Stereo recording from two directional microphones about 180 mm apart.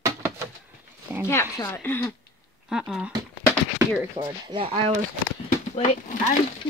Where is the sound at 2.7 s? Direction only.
5° right (ahead or behind).